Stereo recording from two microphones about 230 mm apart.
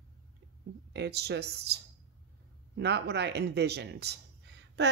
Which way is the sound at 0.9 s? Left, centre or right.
Right.